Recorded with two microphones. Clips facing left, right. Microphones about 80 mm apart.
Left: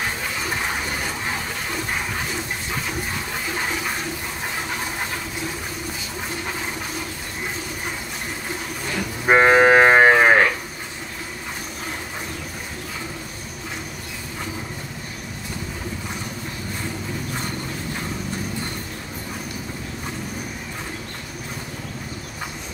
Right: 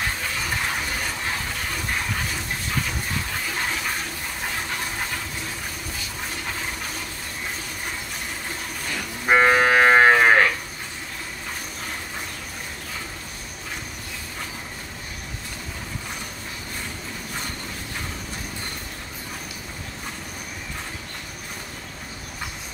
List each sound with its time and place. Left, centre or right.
0.5 s a sound: centre
3.5 s toilet flush: centre
9.3 s cattle: centre